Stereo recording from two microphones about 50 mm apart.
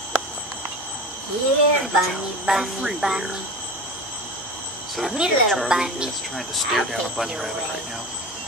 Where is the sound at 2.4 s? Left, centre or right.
Centre.